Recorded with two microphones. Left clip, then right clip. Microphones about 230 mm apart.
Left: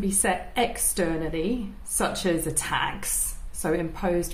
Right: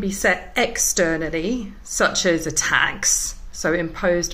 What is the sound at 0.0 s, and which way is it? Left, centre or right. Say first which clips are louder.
A woman's voice: right 6 dB; centre.